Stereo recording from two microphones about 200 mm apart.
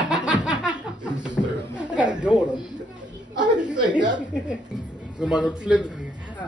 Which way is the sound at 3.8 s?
20° right (ahead or behind).